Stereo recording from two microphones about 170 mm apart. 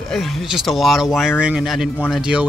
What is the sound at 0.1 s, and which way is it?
Speech, centre (ahead or behind).